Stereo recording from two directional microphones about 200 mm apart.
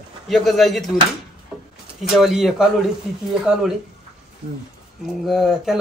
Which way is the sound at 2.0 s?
Centre (ahead or behind).